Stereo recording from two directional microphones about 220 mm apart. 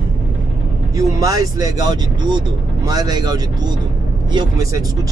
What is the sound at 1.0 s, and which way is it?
Speech, 15° right (ahead or behind).